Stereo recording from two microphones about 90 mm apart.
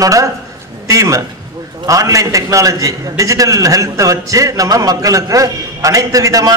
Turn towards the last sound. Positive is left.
turn(degrees=-40)  # may be behind; listen again after turning